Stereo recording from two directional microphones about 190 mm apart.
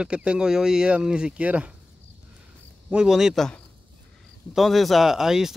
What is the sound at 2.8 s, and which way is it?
Speech, 5° right (ahead or behind).